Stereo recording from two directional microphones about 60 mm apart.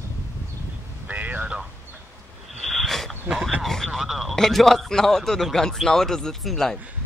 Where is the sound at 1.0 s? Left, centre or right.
Right.